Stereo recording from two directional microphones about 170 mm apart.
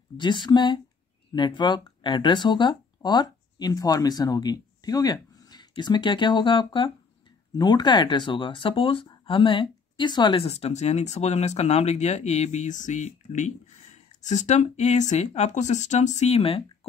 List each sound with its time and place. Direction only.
0.2 s speech: 25° left (ahead or behind)